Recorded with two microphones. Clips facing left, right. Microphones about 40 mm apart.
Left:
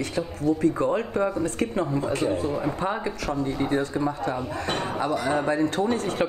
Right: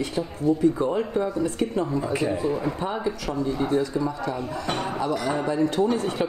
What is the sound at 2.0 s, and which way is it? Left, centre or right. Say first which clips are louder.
Speech: even; centre.